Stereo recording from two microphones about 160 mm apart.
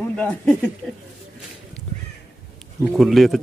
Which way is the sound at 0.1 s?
10° left (ahead or behind).